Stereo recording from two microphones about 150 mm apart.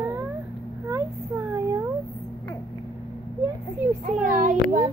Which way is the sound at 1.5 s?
20° right (ahead or behind).